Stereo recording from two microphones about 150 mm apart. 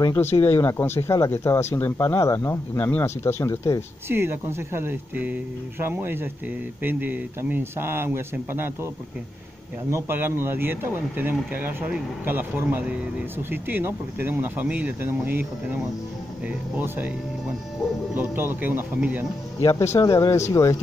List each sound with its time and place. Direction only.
0.0 s speech: 15° left (ahead or behind)
4.1 s speech: 15° right (ahead or behind)
9.8 s speech: 15° right (ahead or behind)
16.7 s speech: 10° right (ahead or behind)
18.1 s speech: 15° right (ahead or behind)
19.6 s speech: 20° left (ahead or behind)